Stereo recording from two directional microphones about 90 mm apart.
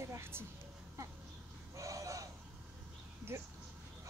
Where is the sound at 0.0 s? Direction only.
30° right (ahead or behind).